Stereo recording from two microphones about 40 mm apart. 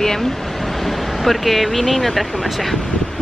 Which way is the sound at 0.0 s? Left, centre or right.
Centre.